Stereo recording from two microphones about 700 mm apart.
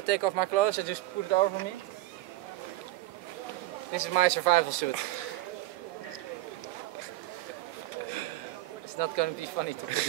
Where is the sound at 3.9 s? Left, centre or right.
Right.